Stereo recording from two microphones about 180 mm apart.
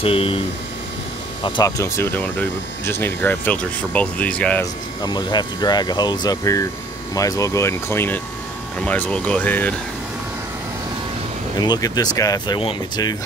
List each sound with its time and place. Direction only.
0.0 s speech: 30° left (ahead or behind)
1.4 s speech: 20° left (ahead or behind)
5.0 s speech: 25° left (ahead or behind)
11.6 s speech: 20° left (ahead or behind)